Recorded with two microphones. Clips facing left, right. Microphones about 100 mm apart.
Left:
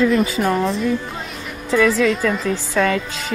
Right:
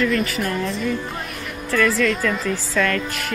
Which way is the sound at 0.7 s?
Centre (ahead or behind).